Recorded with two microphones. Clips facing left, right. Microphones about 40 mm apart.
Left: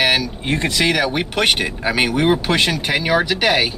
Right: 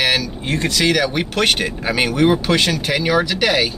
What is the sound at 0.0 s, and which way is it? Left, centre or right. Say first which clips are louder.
Speech: left 1 dB; centre.